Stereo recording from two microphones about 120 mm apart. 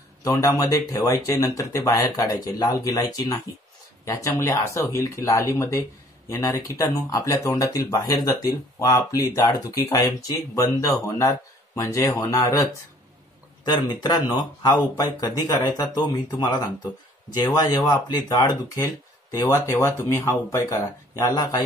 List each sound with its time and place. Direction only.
0.2 s speech: 30° left (ahead or behind)
13.7 s speech: 35° left (ahead or behind)